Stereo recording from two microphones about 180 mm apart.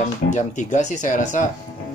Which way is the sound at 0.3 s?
45° left (ahead or behind).